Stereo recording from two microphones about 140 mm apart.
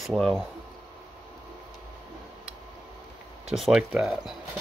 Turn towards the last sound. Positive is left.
turn(degrees=0)  # may be behind; listen again after turning